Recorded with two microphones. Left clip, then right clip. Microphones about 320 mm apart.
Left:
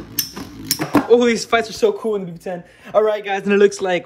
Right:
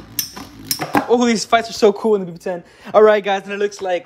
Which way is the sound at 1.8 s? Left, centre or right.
Right.